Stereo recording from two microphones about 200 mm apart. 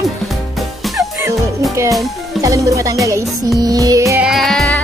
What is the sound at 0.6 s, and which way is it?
Music, centre (ahead or behind).